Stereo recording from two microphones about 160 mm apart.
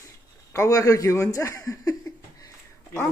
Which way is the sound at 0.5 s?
20° left (ahead or behind).